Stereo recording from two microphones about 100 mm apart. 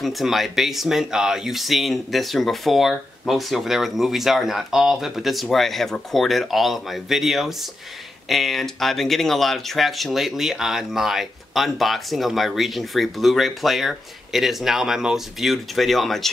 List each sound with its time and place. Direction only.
0.0 s speech: centre (ahead or behind)